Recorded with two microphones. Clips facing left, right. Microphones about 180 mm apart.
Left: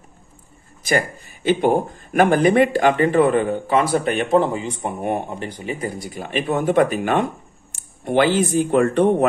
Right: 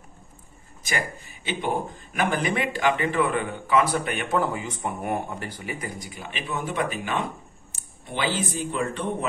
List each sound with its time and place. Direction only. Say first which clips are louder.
0.8 s speech: left 9 dB; 45° left (ahead or behind); by 6.0 s 25° left (ahead or behind)
6.0 s speech: left 11 dB; 45° left (ahead or behind); by 9.1 s 60° left (ahead or behind)